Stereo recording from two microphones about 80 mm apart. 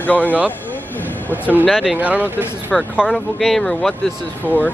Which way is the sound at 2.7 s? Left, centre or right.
Centre.